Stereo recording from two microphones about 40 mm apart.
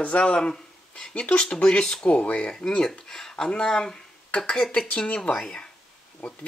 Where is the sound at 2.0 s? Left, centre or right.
Left.